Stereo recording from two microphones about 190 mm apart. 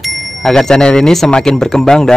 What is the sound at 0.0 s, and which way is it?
Speech, centre (ahead or behind).